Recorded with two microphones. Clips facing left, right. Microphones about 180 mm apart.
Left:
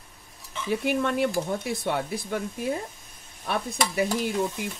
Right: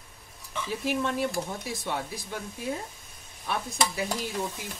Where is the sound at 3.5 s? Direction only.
55° left (ahead or behind).